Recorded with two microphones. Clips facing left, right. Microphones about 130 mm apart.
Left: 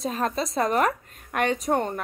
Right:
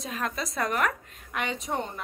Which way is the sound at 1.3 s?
50° left (ahead or behind).